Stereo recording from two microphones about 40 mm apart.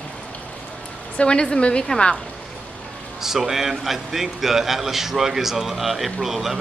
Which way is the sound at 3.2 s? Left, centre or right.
Centre.